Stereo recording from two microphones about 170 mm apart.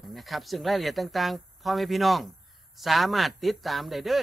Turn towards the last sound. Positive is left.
turn(degrees=0)  # may be behind; listen again after turning